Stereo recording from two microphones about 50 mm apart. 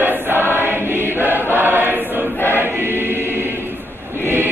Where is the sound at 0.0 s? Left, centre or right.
Right.